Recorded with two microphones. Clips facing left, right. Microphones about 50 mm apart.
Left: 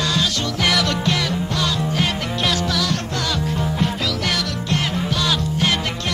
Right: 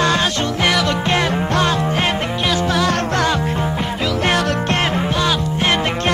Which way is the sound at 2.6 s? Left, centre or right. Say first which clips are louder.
Right 5 dB; right.